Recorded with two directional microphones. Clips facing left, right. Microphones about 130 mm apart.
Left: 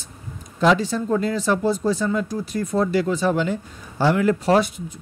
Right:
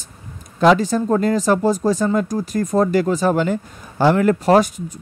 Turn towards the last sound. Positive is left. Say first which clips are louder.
# right 4 dB
turn(degrees=-45)  # may be behind; listen again after turning